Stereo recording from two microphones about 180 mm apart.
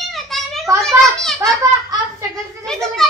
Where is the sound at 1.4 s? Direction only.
20° right (ahead or behind).